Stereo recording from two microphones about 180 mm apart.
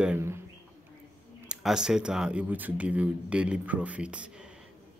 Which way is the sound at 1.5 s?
5° right (ahead or behind).